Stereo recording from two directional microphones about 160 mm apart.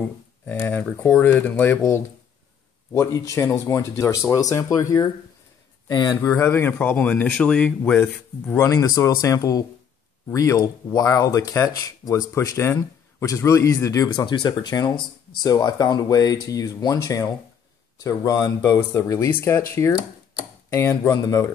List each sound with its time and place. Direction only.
0.0 s speech: 15° left (ahead or behind)
20.7 s speech: 15° left (ahead or behind)